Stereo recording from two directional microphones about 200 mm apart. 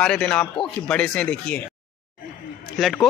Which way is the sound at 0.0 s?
5° left (ahead or behind).